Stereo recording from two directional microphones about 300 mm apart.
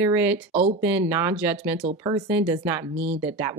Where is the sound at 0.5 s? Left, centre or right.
Right.